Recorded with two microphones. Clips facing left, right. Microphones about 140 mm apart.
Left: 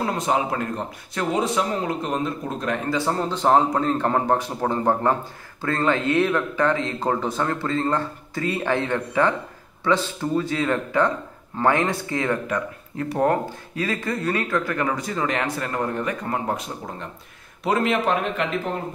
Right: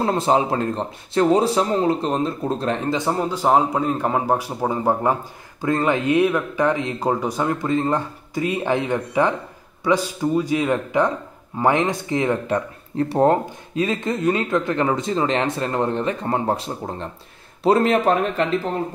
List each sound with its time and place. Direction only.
0.0 s a man's voice: 30° right (ahead or behind)
3.0 s speech: 15° right (ahead or behind)
12.4 s a man's voice: 30° right (ahead or behind)